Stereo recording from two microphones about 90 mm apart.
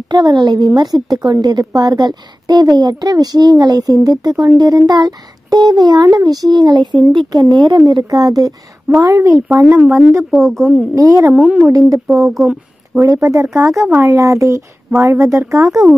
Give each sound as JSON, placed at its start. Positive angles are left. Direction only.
{"t": 0.1, "sound": "a woman's voice", "side_deg": -50}
{"t": 7.1, "sound": "speech", "side_deg": -65}
{"t": 7.4, "sound": "a woman's voice", "side_deg": -50}
{"t": 10.3, "sound": "speech", "side_deg": 0}
{"t": 11.0, "sound": "speech", "side_deg": -40}
{"t": 11.3, "sound": "speech", "side_deg": -5}
{"t": 12.9, "sound": "speech", "side_deg": -35}
{"t": 13.8, "sound": "speech", "side_deg": -25}
{"t": 14.1, "sound": "speech", "side_deg": -35}